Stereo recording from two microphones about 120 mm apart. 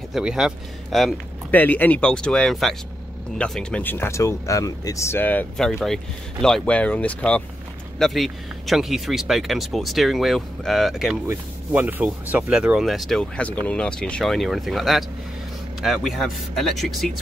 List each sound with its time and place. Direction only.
0.1 s speech: 5° right (ahead or behind)
1.5 s speech: 15° left (ahead or behind)
3.8 s speech: 20° left (ahead or behind); by 11.1 s centre (ahead or behind)
11.2 s speech: 15° right (ahead or behind)